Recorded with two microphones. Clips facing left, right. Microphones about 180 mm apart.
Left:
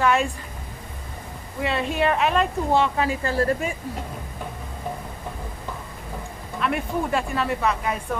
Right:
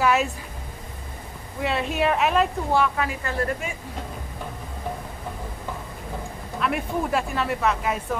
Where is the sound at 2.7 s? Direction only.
25° left (ahead or behind).